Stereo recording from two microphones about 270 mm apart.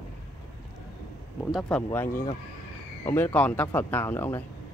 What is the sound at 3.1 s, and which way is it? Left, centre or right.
Speech, centre.